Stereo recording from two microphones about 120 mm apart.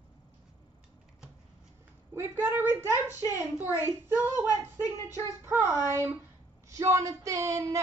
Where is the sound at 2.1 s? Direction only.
20° right (ahead or behind).